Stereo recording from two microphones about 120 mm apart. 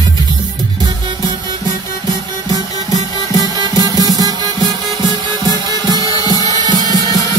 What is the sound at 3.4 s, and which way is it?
Music, 30° right (ahead or behind).